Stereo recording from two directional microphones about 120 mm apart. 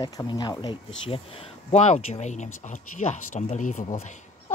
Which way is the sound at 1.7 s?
70° left (ahead or behind).